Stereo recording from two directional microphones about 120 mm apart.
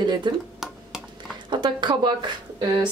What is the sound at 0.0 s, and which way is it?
Speech, 35° right (ahead or behind).